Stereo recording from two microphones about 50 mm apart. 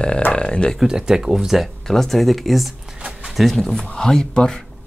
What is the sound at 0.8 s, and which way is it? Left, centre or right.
Speech, centre.